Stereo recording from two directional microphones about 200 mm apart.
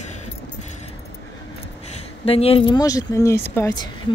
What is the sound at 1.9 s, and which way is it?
Speech, 30° left (ahead or behind).